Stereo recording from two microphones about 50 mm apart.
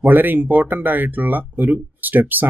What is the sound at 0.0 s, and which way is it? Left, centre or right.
Speech, right.